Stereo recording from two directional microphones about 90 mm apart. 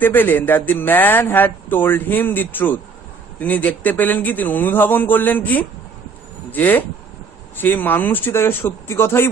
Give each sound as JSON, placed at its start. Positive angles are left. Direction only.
{"t": 0.0, "sound": "speech", "side_deg": 20}